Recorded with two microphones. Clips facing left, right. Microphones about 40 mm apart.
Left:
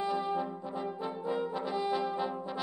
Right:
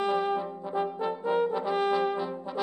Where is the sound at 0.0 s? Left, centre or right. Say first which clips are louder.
Right 5 dB; right.